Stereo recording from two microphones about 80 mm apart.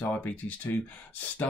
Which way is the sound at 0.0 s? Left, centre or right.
Left.